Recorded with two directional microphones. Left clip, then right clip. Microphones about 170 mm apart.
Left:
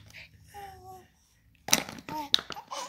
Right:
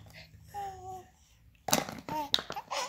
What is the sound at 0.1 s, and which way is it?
Babbling, 35° right (ahead or behind).